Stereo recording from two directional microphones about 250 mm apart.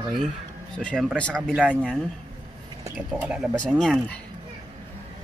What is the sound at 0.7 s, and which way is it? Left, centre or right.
Speech, centre.